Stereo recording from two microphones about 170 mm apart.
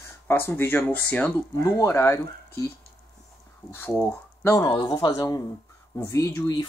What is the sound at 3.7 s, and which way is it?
Speech, 15° left (ahead or behind).